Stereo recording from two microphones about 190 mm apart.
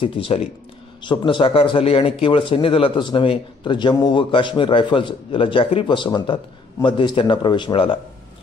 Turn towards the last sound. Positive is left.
turn(degrees=30)  # may be behind; listen again after turning